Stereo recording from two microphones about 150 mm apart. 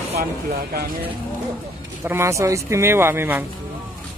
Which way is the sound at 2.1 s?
20° right (ahead or behind).